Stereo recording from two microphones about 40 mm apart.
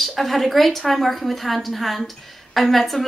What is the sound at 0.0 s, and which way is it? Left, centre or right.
A woman's voice, centre.